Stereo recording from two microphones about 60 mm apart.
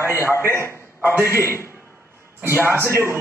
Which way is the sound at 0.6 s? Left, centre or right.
Right.